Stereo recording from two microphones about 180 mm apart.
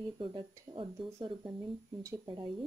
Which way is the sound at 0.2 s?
30° right (ahead or behind).